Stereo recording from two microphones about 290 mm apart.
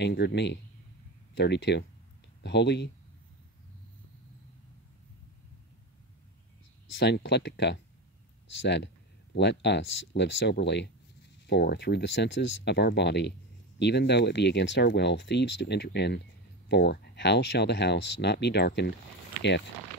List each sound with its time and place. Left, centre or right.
0.0 s speech: left
7.0 s speech: left